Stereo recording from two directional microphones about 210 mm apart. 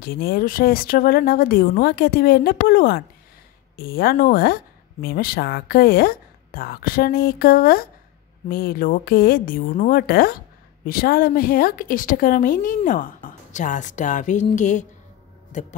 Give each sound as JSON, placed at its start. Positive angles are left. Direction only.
{"t": 0.0, "sound": "a woman's voice", "side_deg": 45}